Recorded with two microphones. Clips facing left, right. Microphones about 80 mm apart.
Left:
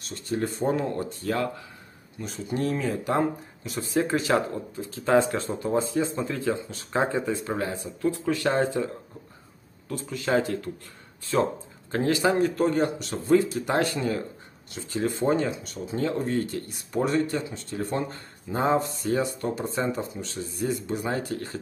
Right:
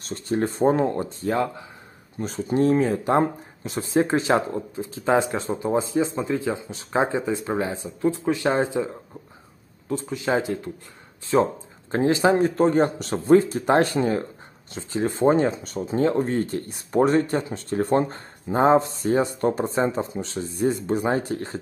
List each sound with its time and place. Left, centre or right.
0.0 s speech: right
2.1 s speech: right
9.8 s speech: right
11.9 s speech: right